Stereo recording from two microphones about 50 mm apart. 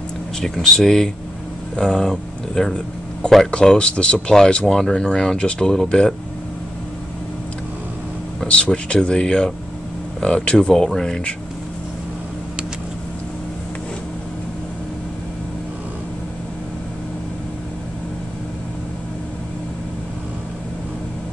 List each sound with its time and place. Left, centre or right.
0.4 s speech: centre
8.5 s speech: left